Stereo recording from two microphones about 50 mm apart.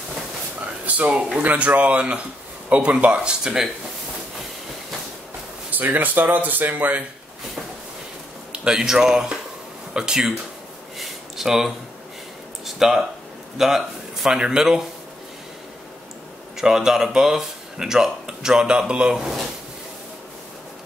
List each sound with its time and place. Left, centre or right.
0.8 s a sound: right
1.6 s speech: right
5.7 s speech: right
8.5 s a man's voice: centre
11.0 s a sound: centre
12.6 s speech: centre
16.5 s speech: centre